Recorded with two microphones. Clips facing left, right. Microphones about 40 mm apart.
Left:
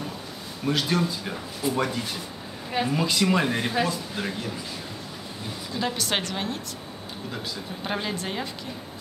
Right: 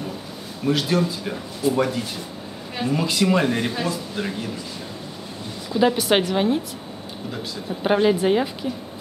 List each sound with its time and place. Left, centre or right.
0.7 s speech: centre
5.7 s a woman's voice: centre
7.8 s a woman's voice: centre